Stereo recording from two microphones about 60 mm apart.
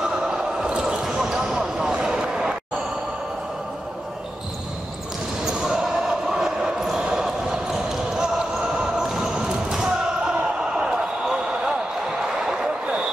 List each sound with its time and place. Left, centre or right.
0.0 s basketball bounce: centre
5.4 s basketball bounce: centre
12.3 s a sound: centre